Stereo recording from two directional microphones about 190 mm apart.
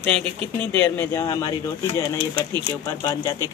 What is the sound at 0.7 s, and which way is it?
Speech, 15° left (ahead or behind).